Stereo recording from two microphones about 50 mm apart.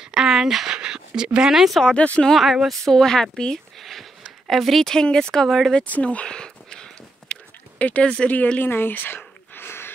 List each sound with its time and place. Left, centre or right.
0.0 s speech: centre
2.0 s speech: left
2.3 s a woman's voice: centre
2.9 s speech: centre
3.8 s a sound: centre
4.5 s a woman's voice: centre
4.8 s speech: centre
5.9 s a sound: left
7.8 s speech: left
8.5 s a sound: left